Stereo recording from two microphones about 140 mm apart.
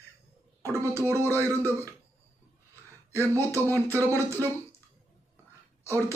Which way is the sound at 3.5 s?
20° right (ahead or behind).